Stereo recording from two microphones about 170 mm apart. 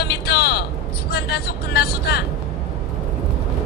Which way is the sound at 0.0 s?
70° left (ahead or behind).